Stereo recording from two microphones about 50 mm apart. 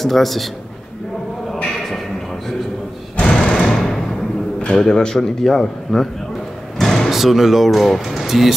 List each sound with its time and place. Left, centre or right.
0.0 s speech: centre
3.3 s music: centre
4.7 s speech: centre
6.8 s slam: centre
7.1 s speech: centre